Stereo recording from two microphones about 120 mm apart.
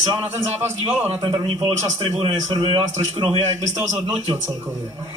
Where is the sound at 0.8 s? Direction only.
50° right (ahead or behind).